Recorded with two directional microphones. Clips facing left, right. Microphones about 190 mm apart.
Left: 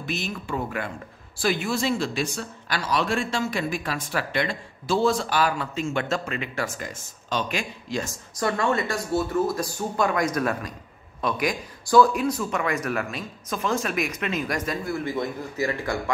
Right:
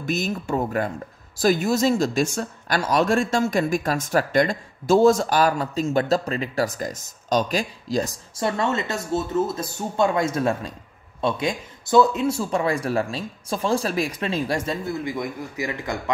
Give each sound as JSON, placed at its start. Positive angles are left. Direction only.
{"t": 0.0, "sound": "speech", "side_deg": -45}
{"t": 8.5, "sound": "speech", "side_deg": -25}
{"t": 15.0, "sound": "a man's voice", "side_deg": -15}